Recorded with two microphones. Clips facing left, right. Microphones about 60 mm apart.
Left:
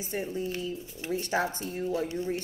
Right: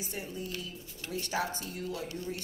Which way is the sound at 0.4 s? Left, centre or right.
Left.